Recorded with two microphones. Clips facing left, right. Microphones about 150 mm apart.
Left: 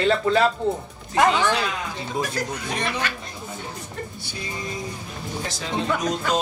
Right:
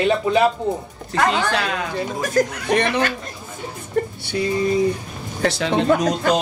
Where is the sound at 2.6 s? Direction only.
65° right (ahead or behind).